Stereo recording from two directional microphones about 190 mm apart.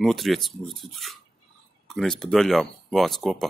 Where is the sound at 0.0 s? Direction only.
Centre (ahead or behind).